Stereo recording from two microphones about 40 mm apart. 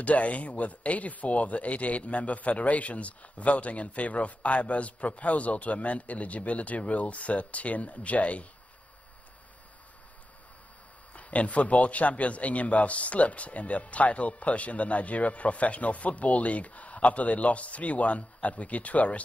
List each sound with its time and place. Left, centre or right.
0.0 s speech: left
11.1 s speech: left